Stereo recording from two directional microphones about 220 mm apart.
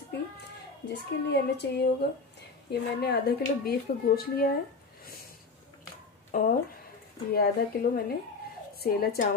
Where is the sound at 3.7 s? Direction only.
45° left (ahead or behind).